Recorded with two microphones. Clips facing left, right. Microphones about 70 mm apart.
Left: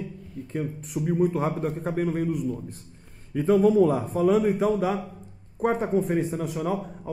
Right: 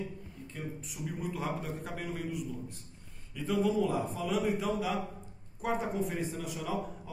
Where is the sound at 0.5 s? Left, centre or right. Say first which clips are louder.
Left 11 dB; left.